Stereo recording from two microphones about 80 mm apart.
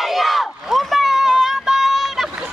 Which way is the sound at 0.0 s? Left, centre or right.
Centre.